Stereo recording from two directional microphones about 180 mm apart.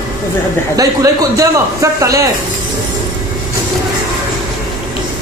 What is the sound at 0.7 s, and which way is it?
Speech, 20° right (ahead or behind).